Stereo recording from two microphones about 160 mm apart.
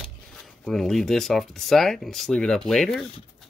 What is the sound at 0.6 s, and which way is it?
Speech, centre (ahead or behind).